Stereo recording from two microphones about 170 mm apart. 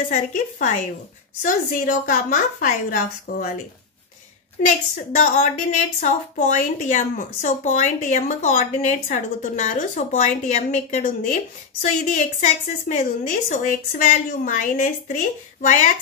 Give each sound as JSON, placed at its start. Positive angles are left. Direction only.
{"t": 0.1, "sound": "a woman's voice", "side_deg": 50}
{"t": 4.6, "sound": "a woman's voice", "side_deg": 50}